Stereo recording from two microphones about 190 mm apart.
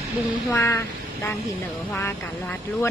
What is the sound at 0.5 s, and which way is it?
Speech, 15° left (ahead or behind).